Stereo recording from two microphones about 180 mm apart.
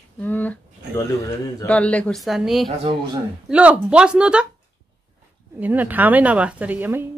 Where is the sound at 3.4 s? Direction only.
5° right (ahead or behind).